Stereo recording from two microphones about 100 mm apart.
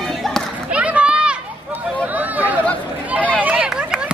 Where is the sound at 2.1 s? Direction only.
15° right (ahead or behind).